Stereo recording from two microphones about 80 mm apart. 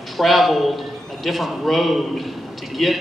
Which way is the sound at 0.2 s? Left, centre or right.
Centre.